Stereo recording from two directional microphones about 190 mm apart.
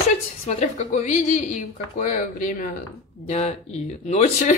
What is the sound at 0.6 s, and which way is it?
A woman's voice, 40° left (ahead or behind).